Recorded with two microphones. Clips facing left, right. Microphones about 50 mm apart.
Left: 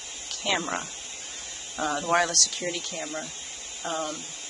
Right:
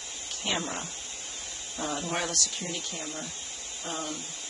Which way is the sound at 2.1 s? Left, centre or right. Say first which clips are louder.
Left 8 dB; left.